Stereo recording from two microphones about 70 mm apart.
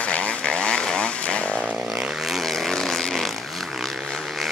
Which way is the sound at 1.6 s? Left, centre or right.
Centre.